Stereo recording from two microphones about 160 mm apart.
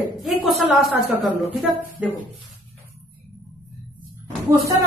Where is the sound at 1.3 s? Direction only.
10° right (ahead or behind).